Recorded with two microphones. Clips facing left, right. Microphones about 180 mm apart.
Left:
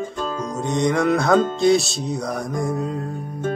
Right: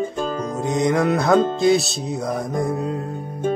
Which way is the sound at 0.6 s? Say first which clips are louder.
Right 1 dB; centre (ahead or behind).